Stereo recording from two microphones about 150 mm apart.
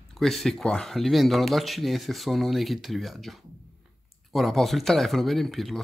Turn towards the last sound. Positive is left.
turn(degrees=0)  # may be behind; listen again after turning